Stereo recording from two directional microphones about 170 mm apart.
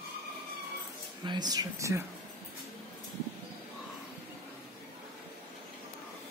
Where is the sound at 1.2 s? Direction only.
25° right (ahead or behind).